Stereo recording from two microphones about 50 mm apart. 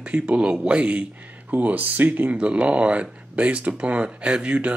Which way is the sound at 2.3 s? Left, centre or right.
Right.